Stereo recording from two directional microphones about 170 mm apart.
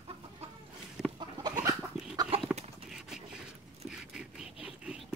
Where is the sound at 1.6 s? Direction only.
20° right (ahead or behind).